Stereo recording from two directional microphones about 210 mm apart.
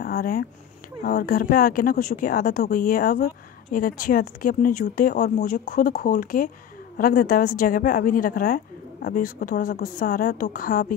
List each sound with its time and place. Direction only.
0.0 s speech: 45° left (ahead or behind)